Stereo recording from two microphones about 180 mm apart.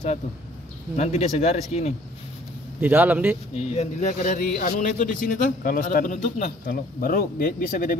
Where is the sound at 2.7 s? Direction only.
10° right (ahead or behind).